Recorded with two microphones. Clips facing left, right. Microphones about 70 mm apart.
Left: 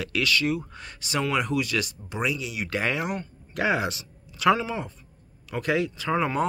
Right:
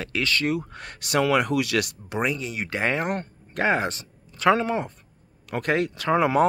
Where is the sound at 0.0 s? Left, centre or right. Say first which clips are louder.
Even; right.